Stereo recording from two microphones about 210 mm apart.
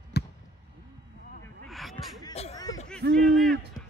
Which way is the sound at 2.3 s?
30° left (ahead or behind).